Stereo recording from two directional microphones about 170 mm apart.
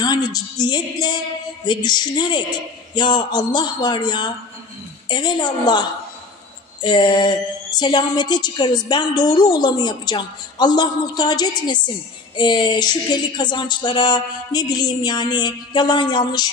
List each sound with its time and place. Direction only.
0.0 s a woman's voice: 25° left (ahead or behind)